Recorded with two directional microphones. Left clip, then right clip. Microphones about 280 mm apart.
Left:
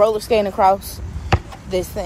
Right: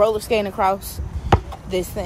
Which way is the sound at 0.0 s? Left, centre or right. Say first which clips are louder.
Left 2 dB; centre.